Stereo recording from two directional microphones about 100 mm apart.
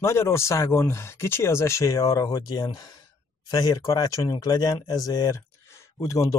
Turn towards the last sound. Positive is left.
turn(degrees=30)  # may be behind; listen again after turning